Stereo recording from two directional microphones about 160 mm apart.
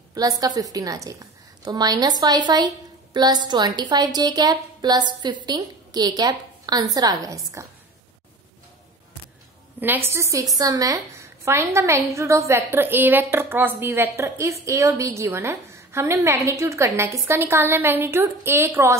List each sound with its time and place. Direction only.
0.1 s a woman's voice: 25° right (ahead or behind)
9.8 s a woman's voice: 10° right (ahead or behind)